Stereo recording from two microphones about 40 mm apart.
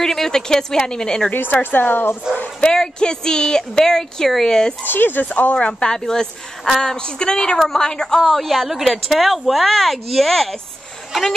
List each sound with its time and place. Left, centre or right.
0.0 s speech: centre
1.3 s a woman's voice: left
2.3 s speech: centre
2.6 s speech: centre
4.8 s speech: left
5.3 s speech: left
5.6 s speech: left
5.9 s speech: centre